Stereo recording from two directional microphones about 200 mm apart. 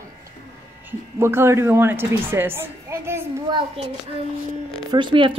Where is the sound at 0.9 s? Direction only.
10° right (ahead or behind).